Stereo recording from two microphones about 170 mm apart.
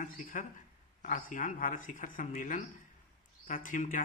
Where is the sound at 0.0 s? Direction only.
45° left (ahead or behind).